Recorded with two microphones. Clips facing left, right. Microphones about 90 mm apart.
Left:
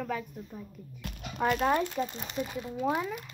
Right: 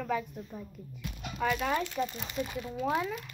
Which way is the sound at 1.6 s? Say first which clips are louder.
Left 3 dB; 25° left (ahead or behind).